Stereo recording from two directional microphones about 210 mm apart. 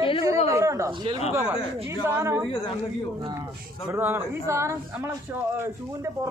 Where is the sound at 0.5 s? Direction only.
15° right (ahead or behind).